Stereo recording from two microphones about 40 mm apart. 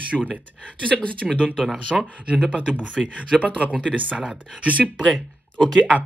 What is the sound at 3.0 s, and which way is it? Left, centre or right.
Speech, centre.